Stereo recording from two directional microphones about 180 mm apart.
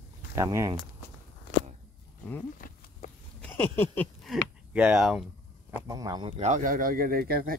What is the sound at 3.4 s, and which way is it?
Speech, 10° left (ahead or behind).